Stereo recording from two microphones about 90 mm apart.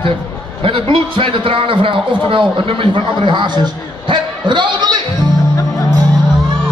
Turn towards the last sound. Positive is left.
turn(degrees=-55)  # may be behind; listen again after turning